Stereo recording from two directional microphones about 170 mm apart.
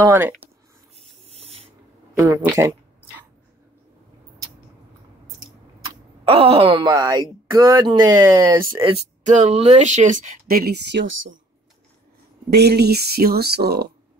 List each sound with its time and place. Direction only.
0.0 s speech: 15° right (ahead or behind)
1.0 s rub: 35° right (ahead or behind)
2.1 s speech: 15° right (ahead or behind)
6.2 s speech: 30° right (ahead or behind)
9.2 s speech: 45° right (ahead or behind); by 11.3 s 90° right
12.4 s speech: 75° right (ahead or behind)